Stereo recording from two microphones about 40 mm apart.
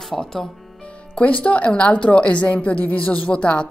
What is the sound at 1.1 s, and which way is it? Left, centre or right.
A woman's voice, left.